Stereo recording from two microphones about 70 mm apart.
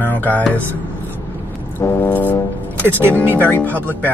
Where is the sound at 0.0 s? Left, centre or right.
Left.